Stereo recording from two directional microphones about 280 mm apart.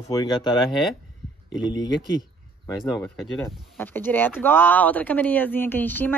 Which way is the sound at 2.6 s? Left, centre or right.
Centre.